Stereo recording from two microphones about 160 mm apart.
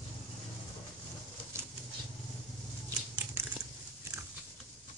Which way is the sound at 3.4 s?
15° right (ahead or behind).